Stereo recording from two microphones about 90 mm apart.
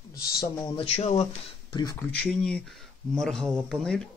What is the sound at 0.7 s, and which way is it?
Speech, 90° left.